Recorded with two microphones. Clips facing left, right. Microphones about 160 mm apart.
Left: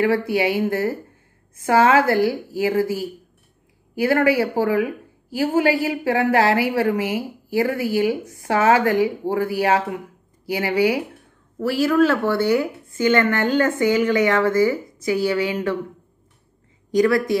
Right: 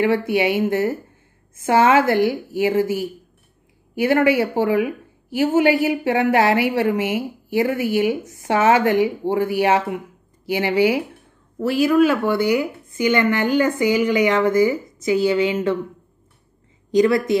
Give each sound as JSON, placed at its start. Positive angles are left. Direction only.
{"t": 0.3, "sound": "a woman's voice", "side_deg": -20}
{"t": 16.9, "sound": "a woman's voice", "side_deg": -20}